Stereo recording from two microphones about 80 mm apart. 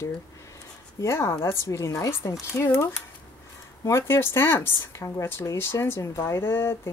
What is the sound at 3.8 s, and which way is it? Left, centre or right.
Speech, left.